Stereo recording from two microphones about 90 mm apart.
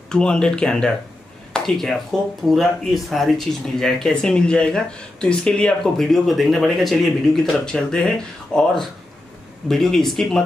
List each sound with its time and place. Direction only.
0.1 s speech: 10° left (ahead or behind)
1.5 s a sound: 5° left (ahead or behind)
2.4 s speech: centre (ahead or behind)